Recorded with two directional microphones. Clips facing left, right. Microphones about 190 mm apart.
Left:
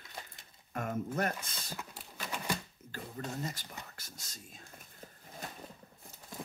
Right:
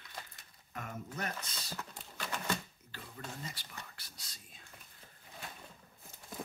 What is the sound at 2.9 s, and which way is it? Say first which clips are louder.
Speech: left 7 dB; 45° left (ahead or behind).